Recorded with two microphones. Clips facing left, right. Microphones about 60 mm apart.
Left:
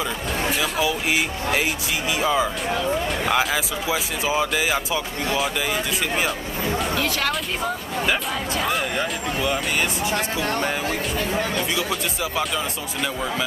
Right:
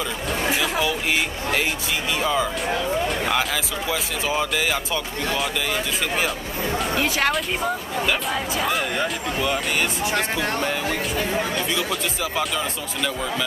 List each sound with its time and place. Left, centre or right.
0.6 s a sound: centre
2.1 s speech: centre
7.0 s speech: centre
8.1 s speech: centre
10.1 s speech: centre